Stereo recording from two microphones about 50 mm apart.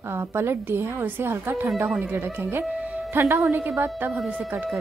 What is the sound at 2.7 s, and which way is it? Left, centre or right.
Music, centre.